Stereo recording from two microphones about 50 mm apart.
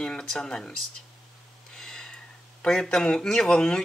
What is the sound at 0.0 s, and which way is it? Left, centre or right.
Speech, centre.